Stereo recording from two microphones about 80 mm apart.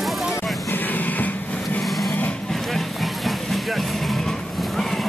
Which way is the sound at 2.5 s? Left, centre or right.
Centre.